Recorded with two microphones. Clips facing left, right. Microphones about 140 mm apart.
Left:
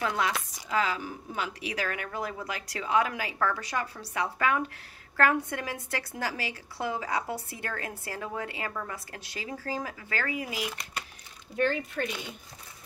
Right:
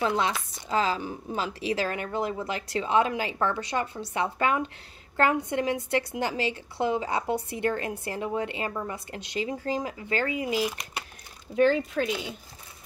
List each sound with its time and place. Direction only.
0.0 s a woman's voice: 25° right (ahead or behind)
11.5 s speech: 90° right